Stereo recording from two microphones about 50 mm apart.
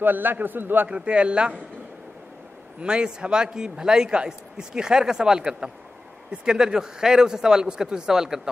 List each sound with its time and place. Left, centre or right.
0.0 s a man's voice: right
0.8 s speech: right
2.8 s a man's voice: centre